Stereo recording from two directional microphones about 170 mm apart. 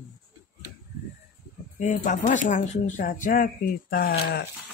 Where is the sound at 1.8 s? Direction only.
50° left (ahead or behind); by 4.5 s 70° left (ahead or behind).